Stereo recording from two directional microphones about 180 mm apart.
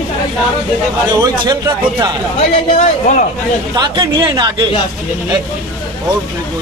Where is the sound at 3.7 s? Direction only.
25° right (ahead or behind).